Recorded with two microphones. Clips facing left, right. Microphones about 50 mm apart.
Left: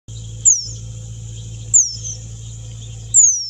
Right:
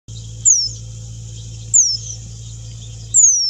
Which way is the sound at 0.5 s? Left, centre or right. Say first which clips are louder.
Right 2 dB; left.